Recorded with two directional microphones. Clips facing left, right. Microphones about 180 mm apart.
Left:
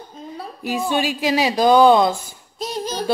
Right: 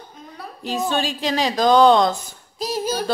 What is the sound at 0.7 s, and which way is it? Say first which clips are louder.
A woman's voice: left 2 dB; 10° left (ahead or behind).